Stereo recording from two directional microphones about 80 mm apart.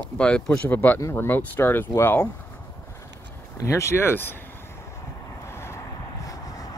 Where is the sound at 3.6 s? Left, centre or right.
Left.